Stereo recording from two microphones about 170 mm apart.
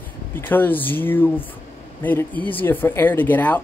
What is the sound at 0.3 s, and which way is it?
Speech, 10° left (ahead or behind).